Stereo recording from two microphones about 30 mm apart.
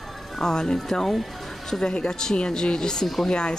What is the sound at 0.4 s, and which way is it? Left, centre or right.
Speech, left.